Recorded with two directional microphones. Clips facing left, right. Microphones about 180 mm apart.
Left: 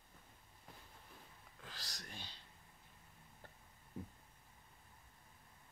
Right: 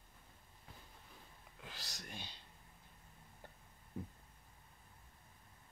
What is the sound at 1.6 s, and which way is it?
Whispering, 20° right (ahead or behind).